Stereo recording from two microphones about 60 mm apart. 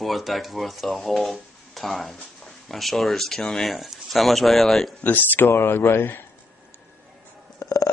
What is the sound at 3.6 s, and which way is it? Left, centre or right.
Speech, centre.